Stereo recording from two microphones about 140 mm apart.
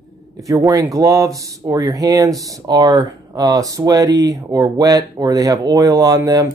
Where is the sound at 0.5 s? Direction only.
25° right (ahead or behind).